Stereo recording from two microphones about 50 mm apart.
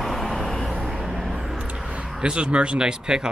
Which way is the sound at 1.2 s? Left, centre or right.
Centre.